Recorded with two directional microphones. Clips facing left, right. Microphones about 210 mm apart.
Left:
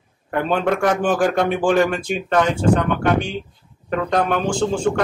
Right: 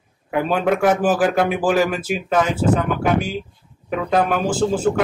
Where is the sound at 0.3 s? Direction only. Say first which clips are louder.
Right 1 dB; 5° right (ahead or behind).